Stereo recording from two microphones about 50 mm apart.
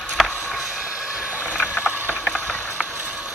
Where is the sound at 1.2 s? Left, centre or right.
Right.